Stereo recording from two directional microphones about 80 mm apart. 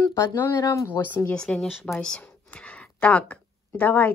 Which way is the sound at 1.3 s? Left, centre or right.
Centre.